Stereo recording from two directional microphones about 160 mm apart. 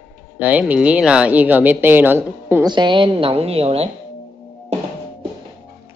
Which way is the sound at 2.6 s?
30° right (ahead or behind).